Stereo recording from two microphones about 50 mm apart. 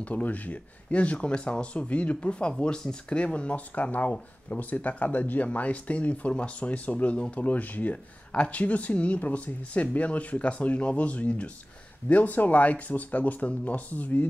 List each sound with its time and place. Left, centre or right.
0.0 s speech: left